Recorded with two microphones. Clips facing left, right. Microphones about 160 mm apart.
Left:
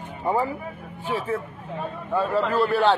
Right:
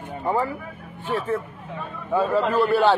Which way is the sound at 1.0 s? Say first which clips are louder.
Right 2 dB; 5° left (ahead or behind).